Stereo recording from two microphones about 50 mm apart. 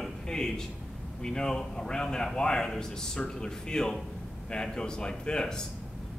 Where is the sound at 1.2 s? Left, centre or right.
Centre.